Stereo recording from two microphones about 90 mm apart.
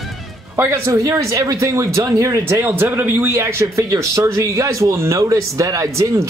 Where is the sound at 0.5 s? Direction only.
30° right (ahead or behind).